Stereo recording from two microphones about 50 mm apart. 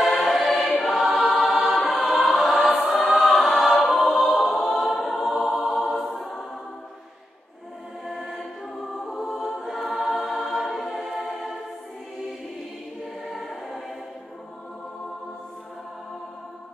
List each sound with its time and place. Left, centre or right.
0.0 s choir: centre
8.1 s choir: centre
9.0 s music: centre
9.9 s choir: centre
10.4 s music: centre
13.3 s choir: centre